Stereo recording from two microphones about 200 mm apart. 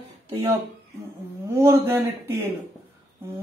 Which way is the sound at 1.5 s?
15° right (ahead or behind).